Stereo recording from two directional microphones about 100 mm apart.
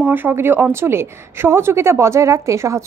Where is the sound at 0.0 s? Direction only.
20° right (ahead or behind).